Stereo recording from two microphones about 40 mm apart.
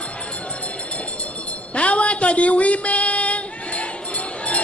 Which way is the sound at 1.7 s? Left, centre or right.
Left.